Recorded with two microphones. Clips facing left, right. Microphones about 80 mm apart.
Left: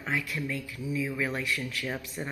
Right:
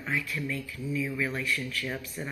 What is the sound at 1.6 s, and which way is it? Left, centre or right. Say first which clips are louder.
Speech: even; centre.